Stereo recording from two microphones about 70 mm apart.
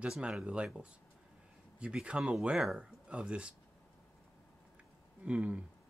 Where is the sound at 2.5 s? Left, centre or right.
Centre.